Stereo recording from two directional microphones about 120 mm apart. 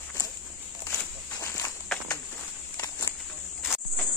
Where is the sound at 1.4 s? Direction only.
25° left (ahead or behind).